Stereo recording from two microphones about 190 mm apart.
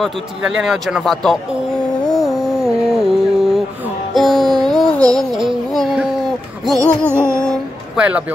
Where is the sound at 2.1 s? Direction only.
Centre (ahead or behind).